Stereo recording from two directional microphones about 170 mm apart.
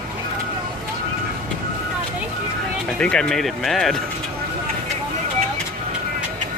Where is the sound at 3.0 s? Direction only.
5° left (ahead or behind).